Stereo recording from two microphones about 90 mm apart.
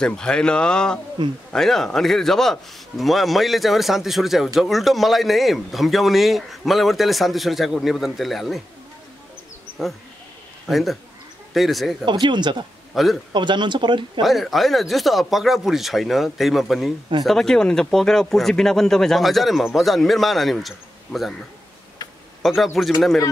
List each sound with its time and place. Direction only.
0.0 s speech: 10° left (ahead or behind)
1.2 s speech: 60° right (ahead or behind)
1.5 s speech: 5° left (ahead or behind)
9.8 s speech: centre (ahead or behind)
12.1 s speech: 60° right (ahead or behind)
12.9 s speech: centre (ahead or behind)
13.3 s speech: 60° right (ahead or behind)
14.2 s speech: centre (ahead or behind)
22.4 s speech: centre (ahead or behind)